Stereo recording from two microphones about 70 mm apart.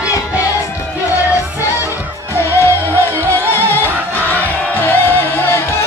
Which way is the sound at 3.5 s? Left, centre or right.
Left.